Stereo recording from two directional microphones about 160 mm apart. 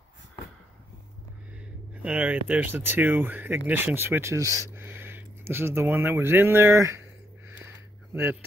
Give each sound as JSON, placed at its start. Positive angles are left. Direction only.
{"t": 2.0, "sound": "speech", "side_deg": -10}